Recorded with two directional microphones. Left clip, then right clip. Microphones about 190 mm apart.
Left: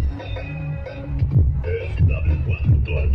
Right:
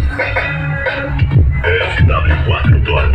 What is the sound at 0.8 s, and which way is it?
Music, 35° left (ahead or behind).